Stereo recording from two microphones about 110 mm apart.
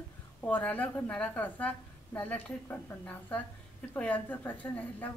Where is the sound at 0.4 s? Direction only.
15° left (ahead or behind).